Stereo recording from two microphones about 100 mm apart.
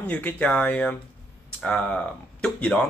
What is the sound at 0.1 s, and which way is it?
Speech, 15° left (ahead or behind).